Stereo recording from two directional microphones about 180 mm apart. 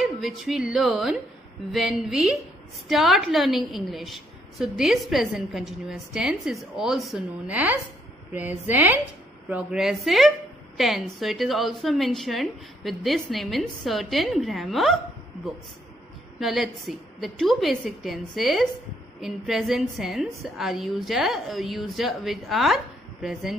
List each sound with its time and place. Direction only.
0.0 s a woman's voice: centre (ahead or behind)
16.3 s a woman's voice: centre (ahead or behind)